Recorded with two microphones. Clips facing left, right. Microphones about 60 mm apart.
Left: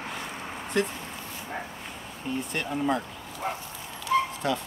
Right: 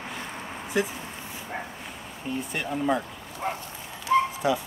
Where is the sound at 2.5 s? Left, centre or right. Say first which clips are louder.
Right 2 dB; centre.